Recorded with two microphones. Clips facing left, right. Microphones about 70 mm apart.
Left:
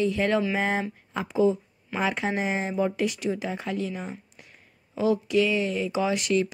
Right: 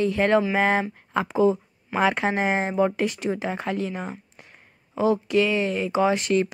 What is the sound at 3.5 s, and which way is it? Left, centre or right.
Speech, right.